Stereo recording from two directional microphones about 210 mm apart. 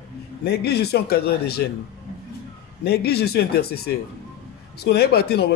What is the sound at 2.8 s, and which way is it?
A man's voice, 50° left (ahead or behind).